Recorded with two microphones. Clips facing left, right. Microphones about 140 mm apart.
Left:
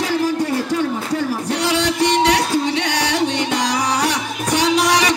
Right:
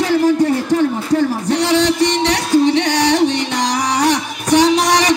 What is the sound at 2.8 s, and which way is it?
Music, 45° right (ahead or behind).